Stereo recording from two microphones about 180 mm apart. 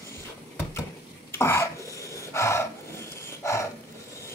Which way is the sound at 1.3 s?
15° left (ahead or behind).